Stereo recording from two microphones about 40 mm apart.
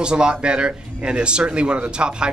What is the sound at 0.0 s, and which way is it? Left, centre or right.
A man's voice, right.